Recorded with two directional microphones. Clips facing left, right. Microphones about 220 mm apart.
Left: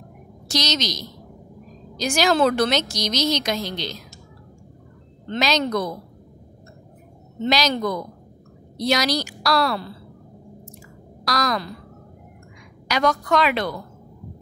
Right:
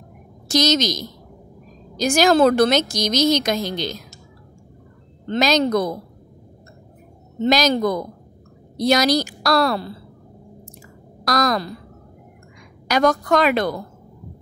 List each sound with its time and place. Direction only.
0.5 s a woman's voice: 50° right (ahead or behind)
5.3 s a woman's voice: 40° right (ahead or behind)
7.4 s a woman's voice: 45° right (ahead or behind)
11.2 s a woman's voice: 45° right (ahead or behind)
12.8 s a woman's voice: 45° right (ahead or behind)